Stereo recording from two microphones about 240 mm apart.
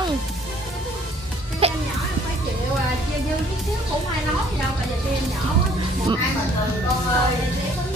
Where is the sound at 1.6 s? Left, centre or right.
Right.